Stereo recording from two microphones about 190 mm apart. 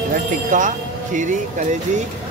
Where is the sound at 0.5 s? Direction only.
40° right (ahead or behind).